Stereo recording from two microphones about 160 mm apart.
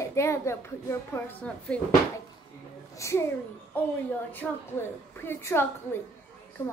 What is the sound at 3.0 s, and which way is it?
Speech, 20° left (ahead or behind).